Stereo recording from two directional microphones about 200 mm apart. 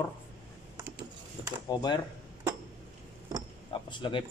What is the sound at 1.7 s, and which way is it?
Speech, 20° left (ahead or behind).